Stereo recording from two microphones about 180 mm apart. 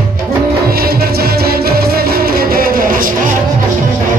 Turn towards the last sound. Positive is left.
turn(degrees=-50)  # may be behind; listen again after turning